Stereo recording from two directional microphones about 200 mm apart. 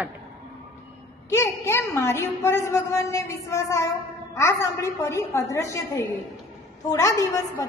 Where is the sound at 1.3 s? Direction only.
15° left (ahead or behind).